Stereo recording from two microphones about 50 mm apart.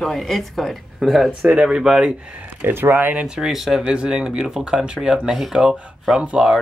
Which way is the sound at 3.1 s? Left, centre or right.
Centre.